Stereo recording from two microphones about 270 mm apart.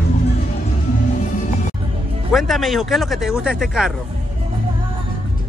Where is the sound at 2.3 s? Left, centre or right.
Centre.